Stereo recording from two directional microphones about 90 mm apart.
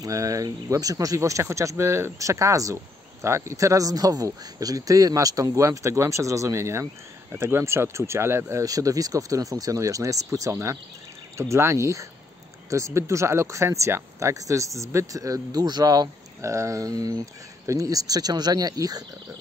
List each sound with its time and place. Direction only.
0.0 s speech: 40° right (ahead or behind)
8.6 s speech: 40° right (ahead or behind)
16.3 s speech: 35° right (ahead or behind)